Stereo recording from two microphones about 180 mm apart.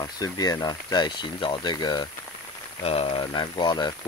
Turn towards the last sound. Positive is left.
turn(degrees=25)  # may be behind; listen again after turning